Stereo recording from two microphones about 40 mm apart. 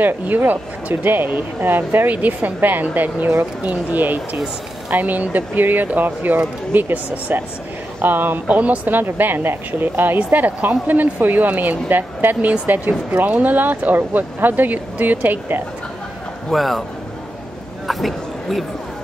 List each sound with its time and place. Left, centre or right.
0.0 s speech: right
2.0 s speech: right
8.0 s speech: right
8.5 s speech: right
8.9 s speech: right
16.4 s a man's voice: centre
17.8 s a sound: centre